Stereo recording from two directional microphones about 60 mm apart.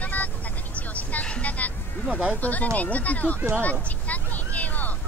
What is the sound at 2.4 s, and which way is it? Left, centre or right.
Speech, left.